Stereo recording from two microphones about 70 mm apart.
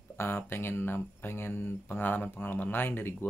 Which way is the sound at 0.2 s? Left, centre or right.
Left.